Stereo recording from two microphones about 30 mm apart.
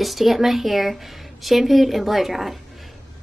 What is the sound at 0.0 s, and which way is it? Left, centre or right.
Speech, centre.